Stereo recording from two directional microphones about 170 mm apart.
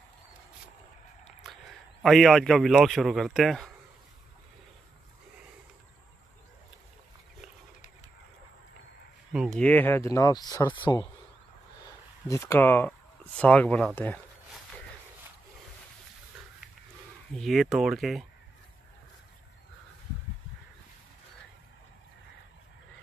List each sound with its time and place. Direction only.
1.2 s a sound: centre (ahead or behind)
2.0 s speech: centre (ahead or behind)
9.3 s a sound: 5° right (ahead or behind)
9.6 s speech: 10° left (ahead or behind); by 11.1 s 25° left (ahead or behind)
12.3 s speech: 15° left (ahead or behind)
17.4 s speech: centre (ahead or behind)